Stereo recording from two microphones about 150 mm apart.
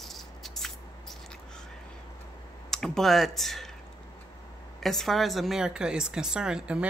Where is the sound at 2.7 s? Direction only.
5° left (ahead or behind).